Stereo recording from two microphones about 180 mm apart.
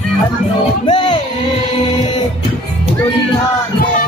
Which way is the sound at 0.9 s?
30° left (ahead or behind).